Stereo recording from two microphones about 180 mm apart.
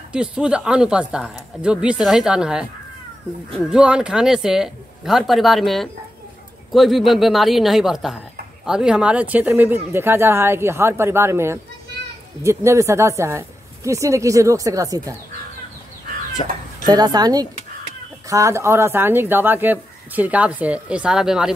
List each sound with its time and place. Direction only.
0.1 s speech: 5° right (ahead or behind)
16.4 s speech: 30° left (ahead or behind)
16.8 s speech: 20° right (ahead or behind); by 21.5 s 5° right (ahead or behind)